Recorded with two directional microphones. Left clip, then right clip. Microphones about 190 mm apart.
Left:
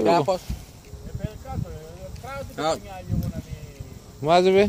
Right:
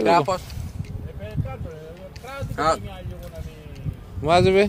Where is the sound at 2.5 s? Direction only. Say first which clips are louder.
Right 4 dB; 55° left (ahead or behind).